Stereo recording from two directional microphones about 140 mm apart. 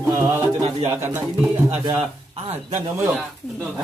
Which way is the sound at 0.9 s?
20° right (ahead or behind).